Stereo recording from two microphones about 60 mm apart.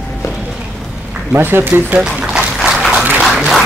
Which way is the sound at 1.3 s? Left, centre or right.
Right.